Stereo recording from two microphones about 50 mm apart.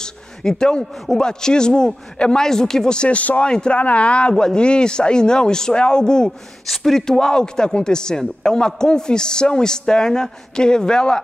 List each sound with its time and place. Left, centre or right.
0.0 s a sound: centre
1.0 s a man's voice: centre
6.7 s a man's voice: centre